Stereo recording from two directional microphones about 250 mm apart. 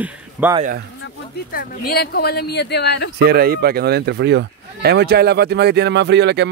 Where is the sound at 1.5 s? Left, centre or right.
Left.